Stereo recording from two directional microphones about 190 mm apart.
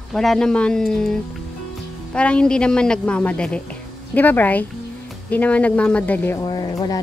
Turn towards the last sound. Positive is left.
turn(degrees=20)  # may be behind; listen again after turning